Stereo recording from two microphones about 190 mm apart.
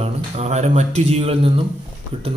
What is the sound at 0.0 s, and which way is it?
Speech, 35° right (ahead or behind).